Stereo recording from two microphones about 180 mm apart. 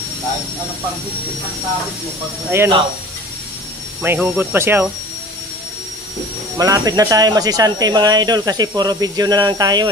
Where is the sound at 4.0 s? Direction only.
10° right (ahead or behind).